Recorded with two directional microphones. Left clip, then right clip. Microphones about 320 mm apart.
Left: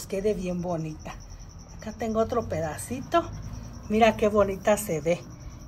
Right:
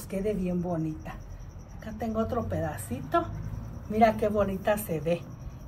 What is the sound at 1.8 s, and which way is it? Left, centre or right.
A woman's voice, centre.